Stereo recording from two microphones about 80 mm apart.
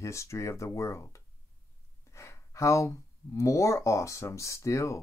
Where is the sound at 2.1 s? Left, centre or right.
Left.